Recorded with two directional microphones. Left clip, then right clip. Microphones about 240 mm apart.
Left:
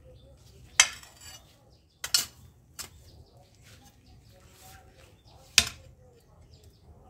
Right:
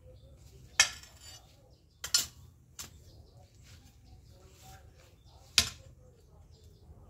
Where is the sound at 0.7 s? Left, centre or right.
Centre.